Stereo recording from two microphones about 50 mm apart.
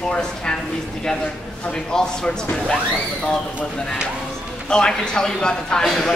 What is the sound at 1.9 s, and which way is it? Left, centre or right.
Speech, centre.